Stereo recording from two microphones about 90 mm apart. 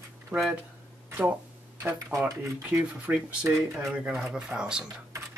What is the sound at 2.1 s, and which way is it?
Speech, 35° right (ahead or behind).